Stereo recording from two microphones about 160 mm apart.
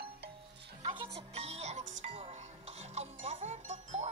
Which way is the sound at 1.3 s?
40° right (ahead or behind).